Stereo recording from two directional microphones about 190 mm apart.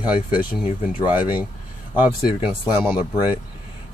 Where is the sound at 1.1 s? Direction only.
10° right (ahead or behind).